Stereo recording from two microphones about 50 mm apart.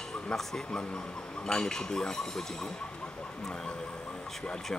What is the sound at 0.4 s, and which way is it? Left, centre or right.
Speech, centre.